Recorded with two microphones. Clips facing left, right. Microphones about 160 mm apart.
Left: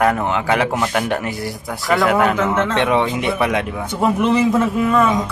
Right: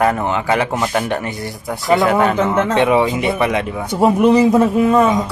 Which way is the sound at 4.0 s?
30° right (ahead or behind).